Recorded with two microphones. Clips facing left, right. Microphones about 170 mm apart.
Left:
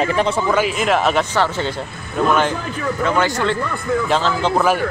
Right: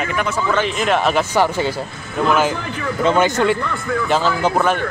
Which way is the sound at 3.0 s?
20° right (ahead or behind).